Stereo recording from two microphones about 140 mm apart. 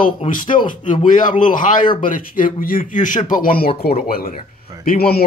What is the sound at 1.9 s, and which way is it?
Speech, 80° left.